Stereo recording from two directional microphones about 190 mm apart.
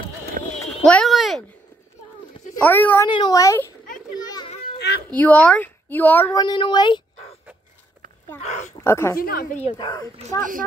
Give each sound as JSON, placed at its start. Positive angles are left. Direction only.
{"t": 0.4, "sound": "a sound", "side_deg": -45}
{"t": 0.8, "sound": "a sound", "side_deg": 5}
{"t": 2.6, "sound": "speech", "side_deg": 10}
{"t": 3.1, "sound": "speech", "side_deg": 20}
{"t": 4.2, "sound": "children playing", "side_deg": 20}
{"t": 4.5, "sound": "children playing", "side_deg": 30}
{"t": 4.7, "sound": "cat", "side_deg": 60}
{"t": 5.1, "sound": "speech", "side_deg": 10}
{"t": 6.3, "sound": "speech", "side_deg": 25}
{"t": 8.4, "sound": "speech", "side_deg": 35}
{"t": 8.7, "sound": "speech", "side_deg": 15}
{"t": 9.2, "sound": "a woman's voice", "side_deg": 50}
{"t": 9.8, "sound": "speech", "side_deg": 20}